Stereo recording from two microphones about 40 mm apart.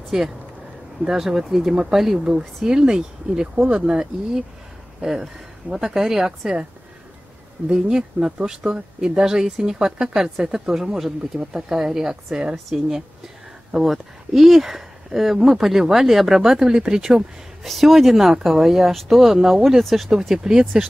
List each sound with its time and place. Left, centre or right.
0.1 s speech: centre
7.7 s speech: centre
17.6 s speech: centre
20.2 s speech: centre